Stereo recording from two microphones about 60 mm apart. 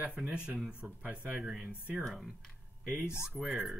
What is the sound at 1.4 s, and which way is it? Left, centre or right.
Speech, centre.